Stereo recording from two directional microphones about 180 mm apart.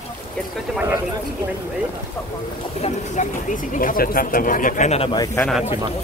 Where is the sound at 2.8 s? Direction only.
40° left (ahead or behind).